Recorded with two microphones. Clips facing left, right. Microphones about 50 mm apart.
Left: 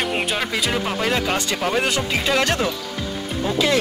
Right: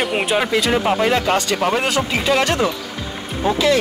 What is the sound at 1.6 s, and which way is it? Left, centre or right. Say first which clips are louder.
Speech: right 3 dB; right.